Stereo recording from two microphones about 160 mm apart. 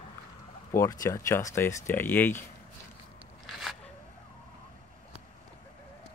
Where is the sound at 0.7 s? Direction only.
20° left (ahead or behind).